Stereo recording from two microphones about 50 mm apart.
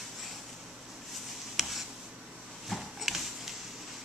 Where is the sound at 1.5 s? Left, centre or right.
Centre.